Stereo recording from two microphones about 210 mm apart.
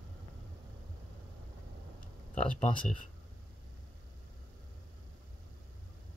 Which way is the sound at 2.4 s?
5° left (ahead or behind).